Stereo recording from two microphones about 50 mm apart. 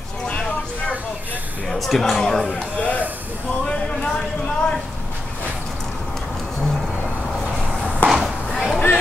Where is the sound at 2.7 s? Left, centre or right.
Left.